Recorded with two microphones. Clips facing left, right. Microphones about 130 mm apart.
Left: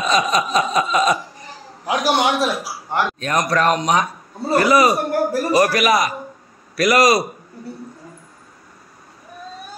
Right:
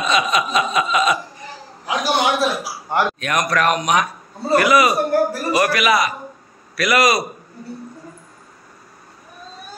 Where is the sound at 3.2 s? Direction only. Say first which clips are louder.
Left 1 dB; 30° left (ahead or behind).